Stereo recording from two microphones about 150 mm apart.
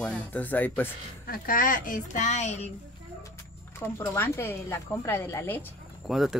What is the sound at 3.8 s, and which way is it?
Speech, 15° left (ahead or behind).